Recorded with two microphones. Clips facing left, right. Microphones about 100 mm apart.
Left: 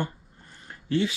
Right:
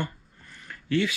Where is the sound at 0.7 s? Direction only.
25° left (ahead or behind).